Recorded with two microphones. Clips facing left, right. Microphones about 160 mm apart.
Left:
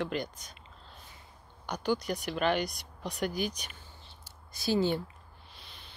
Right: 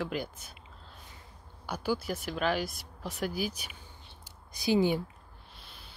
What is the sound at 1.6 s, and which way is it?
Speech, 5° right (ahead or behind).